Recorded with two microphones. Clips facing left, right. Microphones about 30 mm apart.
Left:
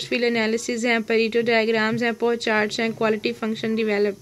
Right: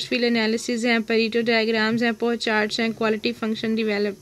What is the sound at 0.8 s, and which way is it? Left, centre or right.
Speech, centre.